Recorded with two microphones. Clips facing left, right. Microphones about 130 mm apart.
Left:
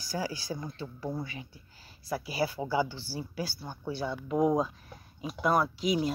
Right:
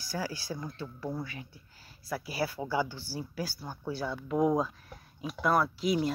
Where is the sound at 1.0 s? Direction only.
10° left (ahead or behind).